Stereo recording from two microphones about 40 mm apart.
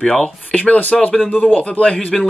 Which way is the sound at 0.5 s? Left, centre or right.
Left.